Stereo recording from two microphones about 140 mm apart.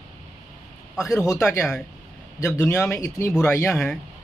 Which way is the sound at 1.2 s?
25° left (ahead or behind).